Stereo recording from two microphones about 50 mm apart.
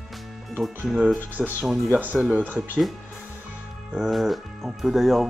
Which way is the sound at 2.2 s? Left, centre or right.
Right.